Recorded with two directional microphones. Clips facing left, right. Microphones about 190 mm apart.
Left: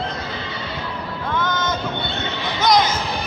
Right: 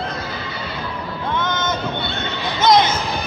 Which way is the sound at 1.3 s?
20° right (ahead or behind).